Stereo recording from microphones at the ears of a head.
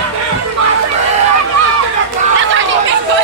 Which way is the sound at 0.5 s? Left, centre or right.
Right.